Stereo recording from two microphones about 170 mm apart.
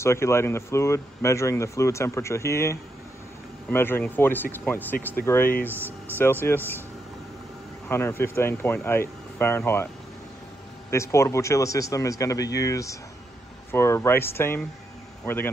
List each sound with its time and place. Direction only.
0.0 s speech: 15° left (ahead or behind)
7.9 s speech: 15° left (ahead or behind)
10.9 s a man's voice: 15° left (ahead or behind)